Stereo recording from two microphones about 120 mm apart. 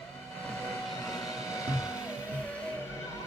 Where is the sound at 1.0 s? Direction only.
30° left (ahead or behind).